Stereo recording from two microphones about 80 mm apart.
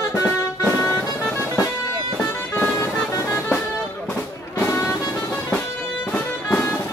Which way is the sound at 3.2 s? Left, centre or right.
Left.